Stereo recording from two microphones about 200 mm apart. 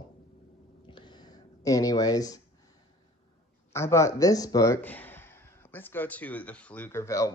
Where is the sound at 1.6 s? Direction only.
15° left (ahead or behind).